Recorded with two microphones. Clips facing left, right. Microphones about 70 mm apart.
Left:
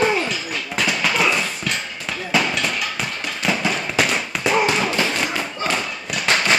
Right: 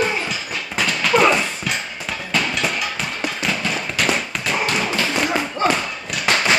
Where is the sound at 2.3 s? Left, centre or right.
Centre.